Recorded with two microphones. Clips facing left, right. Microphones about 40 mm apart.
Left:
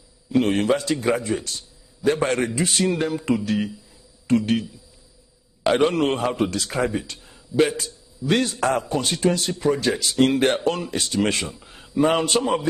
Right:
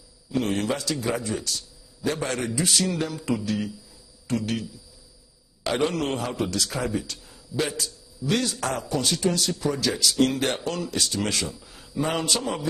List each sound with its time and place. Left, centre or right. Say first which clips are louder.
0.3 s a man's voice: left 6 dB; left